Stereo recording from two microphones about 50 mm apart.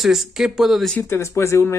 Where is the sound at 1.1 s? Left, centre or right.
Left.